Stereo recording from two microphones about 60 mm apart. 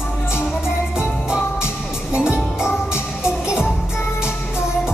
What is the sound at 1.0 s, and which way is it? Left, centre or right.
Music, centre.